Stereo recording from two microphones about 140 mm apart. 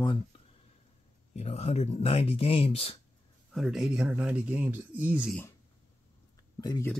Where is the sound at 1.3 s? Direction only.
50° left (ahead or behind).